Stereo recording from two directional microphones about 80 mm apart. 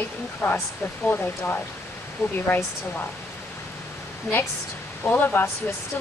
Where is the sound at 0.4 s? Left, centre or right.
Left.